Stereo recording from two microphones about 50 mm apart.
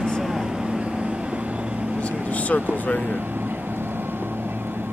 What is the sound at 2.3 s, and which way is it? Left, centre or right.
Vehicle, left.